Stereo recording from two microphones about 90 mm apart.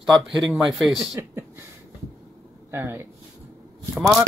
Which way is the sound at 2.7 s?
25° right (ahead or behind).